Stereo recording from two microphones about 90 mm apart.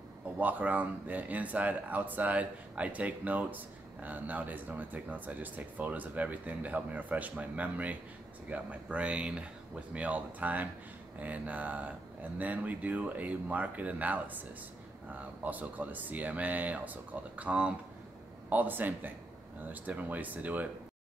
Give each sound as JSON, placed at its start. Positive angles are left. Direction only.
{"t": 0.4, "sound": "speech", "side_deg": -20}